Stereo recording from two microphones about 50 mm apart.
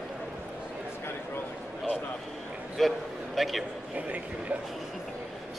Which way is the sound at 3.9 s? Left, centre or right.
Right.